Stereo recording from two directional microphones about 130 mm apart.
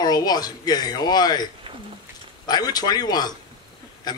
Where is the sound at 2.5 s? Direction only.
30° left (ahead or behind).